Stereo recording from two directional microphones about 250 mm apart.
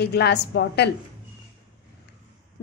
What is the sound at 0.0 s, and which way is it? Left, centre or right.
Speech, left.